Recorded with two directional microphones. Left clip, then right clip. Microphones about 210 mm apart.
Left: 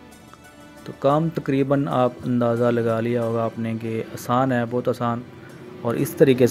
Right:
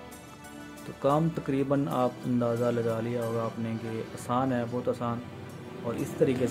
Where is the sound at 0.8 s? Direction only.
20° left (ahead or behind); by 6.5 s 35° left (ahead or behind).